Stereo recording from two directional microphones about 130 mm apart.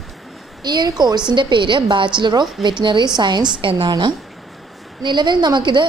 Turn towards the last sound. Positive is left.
turn(degrees=-35)  # may be behind; listen again after turning